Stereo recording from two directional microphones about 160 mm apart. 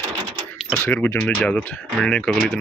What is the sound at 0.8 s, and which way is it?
Speech, 15° left (ahead or behind).